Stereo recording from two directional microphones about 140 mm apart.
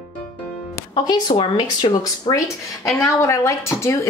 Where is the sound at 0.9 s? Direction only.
30° left (ahead or behind).